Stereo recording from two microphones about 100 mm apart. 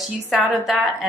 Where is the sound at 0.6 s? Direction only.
5° right (ahead or behind).